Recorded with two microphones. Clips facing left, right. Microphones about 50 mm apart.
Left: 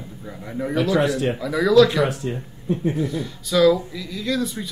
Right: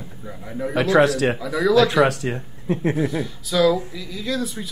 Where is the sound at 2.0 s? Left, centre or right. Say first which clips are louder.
Right 3 dB; right.